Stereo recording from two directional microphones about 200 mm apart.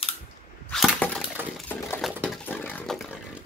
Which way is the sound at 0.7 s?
Centre (ahead or behind).